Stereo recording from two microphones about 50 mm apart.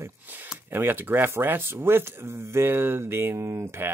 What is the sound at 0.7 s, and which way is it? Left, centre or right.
Speech, right.